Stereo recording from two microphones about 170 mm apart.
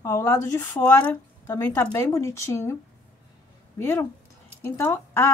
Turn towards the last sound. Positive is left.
turn(degrees=15)  # may be behind; listen again after turning